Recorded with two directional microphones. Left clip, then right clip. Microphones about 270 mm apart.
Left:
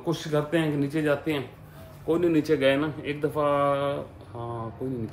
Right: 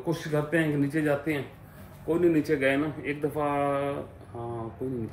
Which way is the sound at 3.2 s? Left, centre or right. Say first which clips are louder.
Left 4 dB; centre.